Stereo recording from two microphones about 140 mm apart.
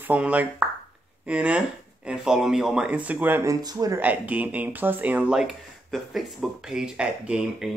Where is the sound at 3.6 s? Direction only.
25° right (ahead or behind).